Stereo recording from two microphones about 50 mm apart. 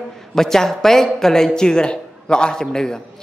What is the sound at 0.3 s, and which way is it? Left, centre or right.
A man's voice, centre.